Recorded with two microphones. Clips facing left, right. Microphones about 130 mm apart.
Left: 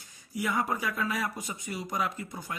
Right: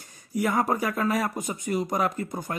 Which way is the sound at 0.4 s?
50° right (ahead or behind).